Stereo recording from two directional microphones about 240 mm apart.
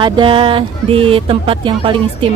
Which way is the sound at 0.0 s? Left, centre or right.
Right.